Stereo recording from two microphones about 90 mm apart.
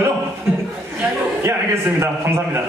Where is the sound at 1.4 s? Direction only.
30° right (ahead or behind).